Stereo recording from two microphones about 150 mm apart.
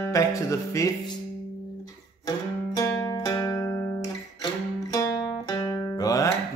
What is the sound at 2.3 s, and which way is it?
Music, 20° left (ahead or behind).